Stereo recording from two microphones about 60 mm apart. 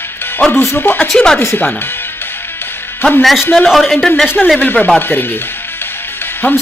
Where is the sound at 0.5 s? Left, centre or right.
Left.